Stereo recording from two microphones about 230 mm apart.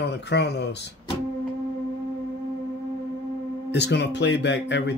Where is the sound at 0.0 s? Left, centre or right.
Left.